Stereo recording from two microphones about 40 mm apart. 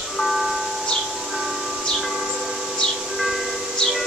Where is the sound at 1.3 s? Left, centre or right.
Centre.